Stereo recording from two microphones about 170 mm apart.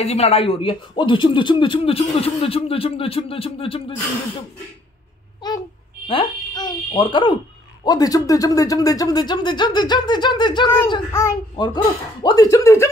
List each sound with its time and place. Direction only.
0.0 s speech: 40° left (ahead or behind)
6.0 s speech: 25° left (ahead or behind)
11.1 s a child's voice: 15° left (ahead or behind)
11.5 s speech: 25° left (ahead or behind)